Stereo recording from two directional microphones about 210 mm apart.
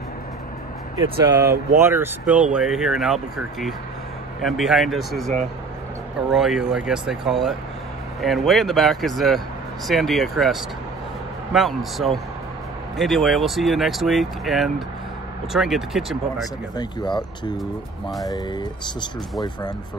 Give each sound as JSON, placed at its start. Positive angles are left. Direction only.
{"t": 0.9, "sound": "speech", "side_deg": -15}
{"t": 6.3, "sound": "speech", "side_deg": 0}
{"t": 16.7, "sound": "speech", "side_deg": 20}